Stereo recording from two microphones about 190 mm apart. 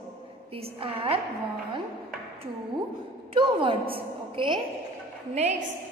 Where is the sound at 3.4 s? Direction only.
25° right (ahead or behind).